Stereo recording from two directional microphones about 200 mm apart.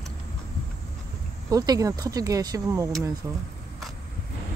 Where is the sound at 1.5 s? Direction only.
20° right (ahead or behind).